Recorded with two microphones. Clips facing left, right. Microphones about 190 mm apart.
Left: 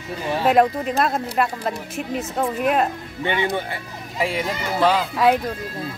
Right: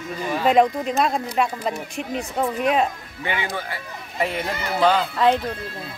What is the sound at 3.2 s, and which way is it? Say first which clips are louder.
Speech: left 4 dB; 25° left (ahead or behind).